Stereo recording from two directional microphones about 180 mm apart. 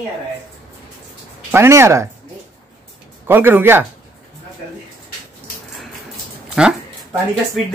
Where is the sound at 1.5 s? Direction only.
15° right (ahead or behind).